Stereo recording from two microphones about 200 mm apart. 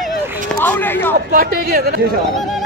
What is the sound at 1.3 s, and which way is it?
Speech, 50° right (ahead or behind).